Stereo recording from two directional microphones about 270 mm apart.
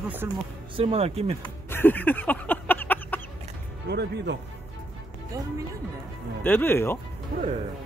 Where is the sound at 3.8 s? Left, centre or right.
Right.